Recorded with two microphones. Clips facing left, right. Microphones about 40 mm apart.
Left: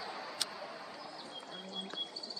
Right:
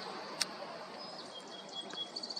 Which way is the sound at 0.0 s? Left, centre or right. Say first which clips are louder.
Even; centre.